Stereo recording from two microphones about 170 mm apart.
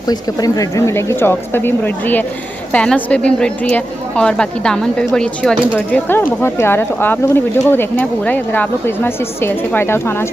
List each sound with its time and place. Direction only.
0.0 s a woman's voice: 20° left (ahead or behind)